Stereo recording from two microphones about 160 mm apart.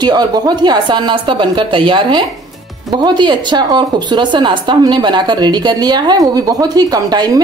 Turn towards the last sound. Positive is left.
turn(degrees=-25)  # may be behind; listen again after turning